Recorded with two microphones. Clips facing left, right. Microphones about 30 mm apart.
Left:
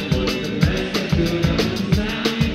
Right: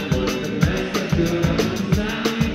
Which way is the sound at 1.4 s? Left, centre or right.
Left.